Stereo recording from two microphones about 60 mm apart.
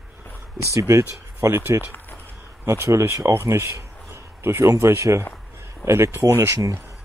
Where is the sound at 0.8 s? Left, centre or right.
Right.